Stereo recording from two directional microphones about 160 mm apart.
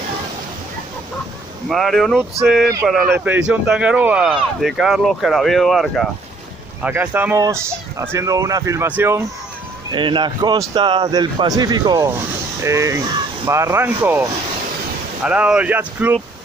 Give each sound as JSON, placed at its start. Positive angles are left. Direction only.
{"t": 1.7, "sound": "speech", "side_deg": 0}
{"t": 6.8, "sound": "speech", "side_deg": -10}
{"t": 9.9, "sound": "a man's voice", "side_deg": -30}
{"t": 15.2, "sound": "speech", "side_deg": -5}